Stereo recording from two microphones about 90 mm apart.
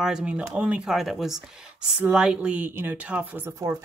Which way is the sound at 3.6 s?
40° right (ahead or behind).